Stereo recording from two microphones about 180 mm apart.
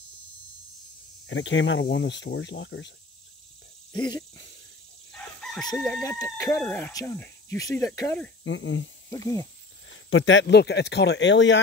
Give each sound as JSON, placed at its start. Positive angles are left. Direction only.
{"t": 1.2, "sound": "speech", "side_deg": 90}
{"t": 3.9, "sound": "snake", "side_deg": 25}
{"t": 5.1, "sound": "chicken", "side_deg": 0}
{"t": 5.8, "sound": "speech", "side_deg": 5}
{"t": 6.3, "sound": "speech", "side_deg": 15}
{"t": 8.5, "sound": "speech", "side_deg": 90}
{"t": 9.1, "sound": "speech", "side_deg": 20}
{"t": 10.0, "sound": "speech", "side_deg": 90}